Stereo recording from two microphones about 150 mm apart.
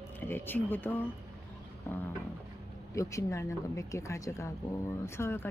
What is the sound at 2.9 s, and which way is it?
Speech, 20° left (ahead or behind).